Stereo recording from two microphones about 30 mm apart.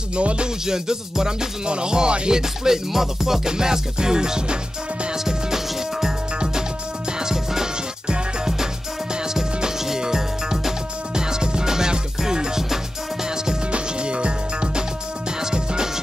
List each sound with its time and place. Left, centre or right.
0.1 s music: right
0.7 s music: right
2.3 s music: centre
7.2 s music: right
9.3 s music: centre
13.7 s music: right